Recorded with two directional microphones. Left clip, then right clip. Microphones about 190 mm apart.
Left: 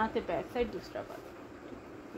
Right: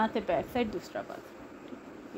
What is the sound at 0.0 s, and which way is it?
A woman's voice, 60° right (ahead or behind).